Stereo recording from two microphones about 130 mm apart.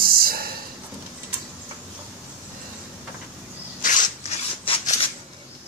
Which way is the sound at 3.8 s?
85° left.